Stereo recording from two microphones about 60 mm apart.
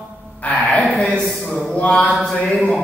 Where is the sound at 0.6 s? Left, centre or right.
Centre.